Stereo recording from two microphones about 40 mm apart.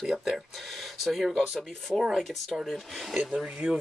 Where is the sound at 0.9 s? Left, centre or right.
Centre; by 3.8 s right.